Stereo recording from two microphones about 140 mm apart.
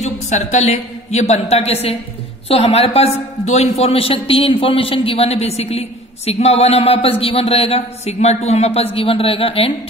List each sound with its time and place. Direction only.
0.0 s a man's voice: 55° left (ahead or behind)